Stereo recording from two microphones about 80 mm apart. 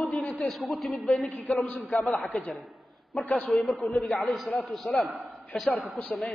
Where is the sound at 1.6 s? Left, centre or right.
Centre.